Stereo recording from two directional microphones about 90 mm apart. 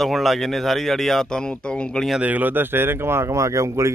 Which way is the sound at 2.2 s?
20° right (ahead or behind).